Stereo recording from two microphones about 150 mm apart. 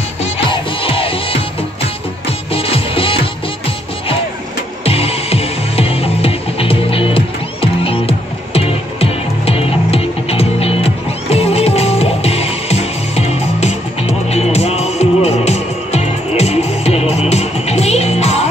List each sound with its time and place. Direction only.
0.5 s music: 35° left (ahead or behind)